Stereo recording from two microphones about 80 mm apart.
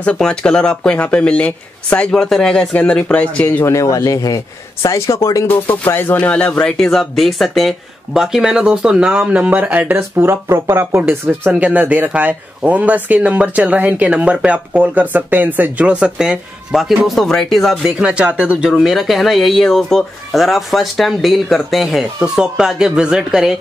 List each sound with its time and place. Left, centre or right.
0.0 s speech: centre
3.6 s speech: left
4.8 s speech: left
5.5 s speech: left
6.1 s speech: centre
17.9 s speech: centre
18.8 s speech: centre